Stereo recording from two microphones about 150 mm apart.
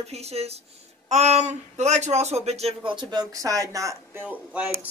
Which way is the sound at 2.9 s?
30° right (ahead or behind).